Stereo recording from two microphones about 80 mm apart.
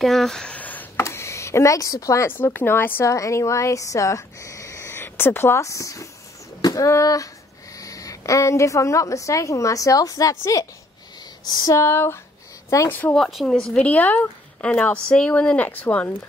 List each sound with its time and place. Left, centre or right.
0.0 s speech: centre
0.6 s a sound: left
0.9 s a sound: left
2.2 s speech: left
3.1 s a woman's voice: left
11.4 s a sound: left
11.7 s speech: left
13.1 s speech: centre
13.7 s speech: centre